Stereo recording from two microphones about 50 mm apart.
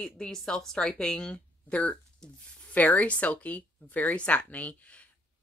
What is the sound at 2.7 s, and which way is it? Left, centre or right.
Speech, left.